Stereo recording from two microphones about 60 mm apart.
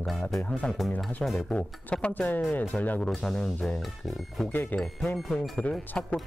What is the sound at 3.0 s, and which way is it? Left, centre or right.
Speech, centre.